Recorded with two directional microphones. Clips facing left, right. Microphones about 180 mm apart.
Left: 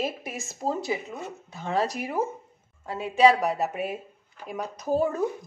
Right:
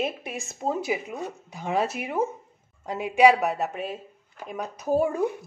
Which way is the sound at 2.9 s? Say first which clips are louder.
Right 1 dB; 15° right (ahead or behind).